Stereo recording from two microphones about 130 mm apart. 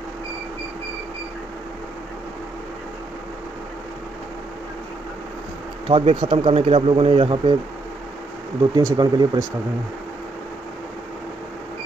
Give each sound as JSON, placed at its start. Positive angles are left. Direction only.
{"t": 5.9, "sound": "speech", "side_deg": -40}
{"t": 8.7, "sound": "speech", "side_deg": -30}